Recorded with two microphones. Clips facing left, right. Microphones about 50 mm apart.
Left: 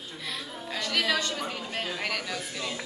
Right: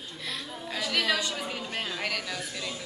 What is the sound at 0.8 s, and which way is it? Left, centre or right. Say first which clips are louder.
Speech: even; centre.